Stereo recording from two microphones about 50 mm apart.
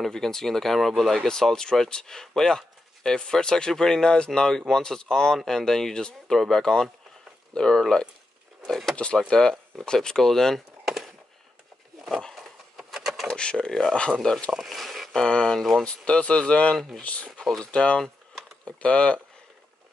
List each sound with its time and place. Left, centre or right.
0.0 s speech: centre
8.9 s speech: left; by 11.1 s centre
12.4 s a sound: centre
13.3 s speech: centre
13.7 s speech: centre
15.1 s speech: centre